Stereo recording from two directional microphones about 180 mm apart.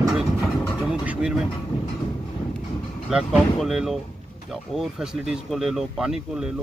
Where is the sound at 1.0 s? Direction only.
5° right (ahead or behind).